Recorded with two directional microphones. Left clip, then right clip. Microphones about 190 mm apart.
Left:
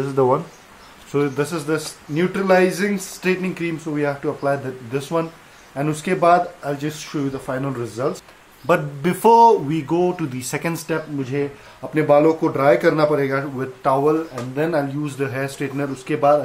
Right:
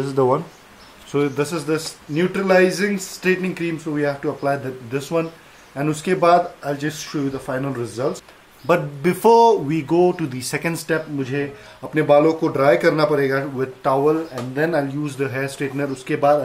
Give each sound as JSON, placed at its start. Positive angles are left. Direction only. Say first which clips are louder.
{"t": 0.0, "sound": "a man's voice", "louder": "even", "side_deg": -5}
{"t": 10.5, "sound": "a man's voice", "louder": "right 2 dB", "side_deg": 0}